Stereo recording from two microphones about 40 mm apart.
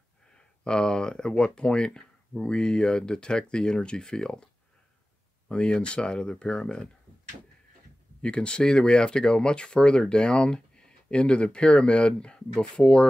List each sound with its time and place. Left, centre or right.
0.7 s speech: centre
5.5 s speech: left
8.2 s speech: left